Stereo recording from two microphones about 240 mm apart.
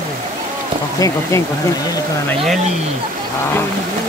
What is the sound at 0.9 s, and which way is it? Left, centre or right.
Speech, centre.